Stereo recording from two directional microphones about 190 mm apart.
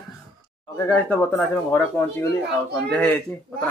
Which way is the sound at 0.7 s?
15° left (ahead or behind).